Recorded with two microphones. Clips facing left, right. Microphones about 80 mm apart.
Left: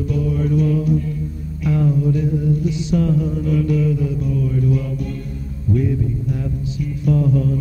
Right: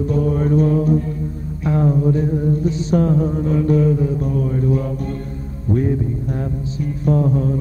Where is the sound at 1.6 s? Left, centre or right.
Right.